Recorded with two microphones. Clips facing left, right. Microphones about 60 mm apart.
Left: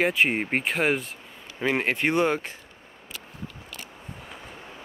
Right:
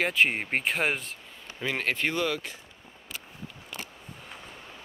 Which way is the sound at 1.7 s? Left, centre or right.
Left.